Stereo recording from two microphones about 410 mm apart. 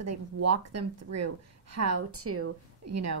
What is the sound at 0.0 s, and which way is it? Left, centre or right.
Speech, right.